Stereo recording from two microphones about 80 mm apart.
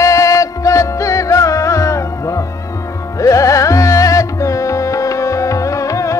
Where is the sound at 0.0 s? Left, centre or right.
Left.